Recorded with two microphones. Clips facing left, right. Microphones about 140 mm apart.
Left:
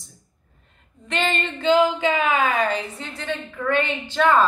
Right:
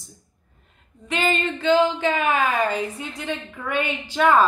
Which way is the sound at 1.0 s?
10° right (ahead or behind).